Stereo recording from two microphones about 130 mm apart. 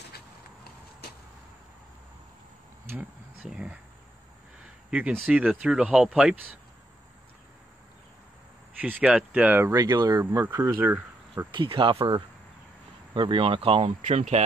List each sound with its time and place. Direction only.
3.0 s speech: 5° right (ahead or behind)
4.6 s a sound: 10° right (ahead or behind)
5.1 s speech: centre (ahead or behind)
8.8 s speech: 10° right (ahead or behind)
9.8 s speech: 35° right (ahead or behind)
10.6 s speech: 15° right (ahead or behind)
11.5 s speech: 40° right (ahead or behind)
13.1 s speech: 40° right (ahead or behind)